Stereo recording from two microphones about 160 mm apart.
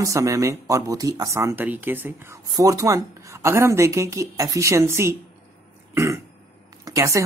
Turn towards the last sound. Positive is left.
turn(degrees=-20)  # may be behind; listen again after turning